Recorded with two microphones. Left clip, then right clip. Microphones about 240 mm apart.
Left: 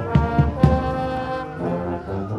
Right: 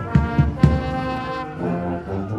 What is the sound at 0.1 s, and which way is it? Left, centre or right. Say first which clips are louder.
Music: left 1 dB; centre.